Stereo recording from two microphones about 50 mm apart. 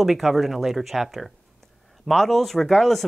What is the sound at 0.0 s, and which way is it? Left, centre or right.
Speech, centre.